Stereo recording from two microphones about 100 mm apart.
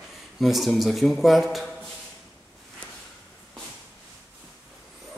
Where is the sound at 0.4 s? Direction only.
Centre (ahead or behind).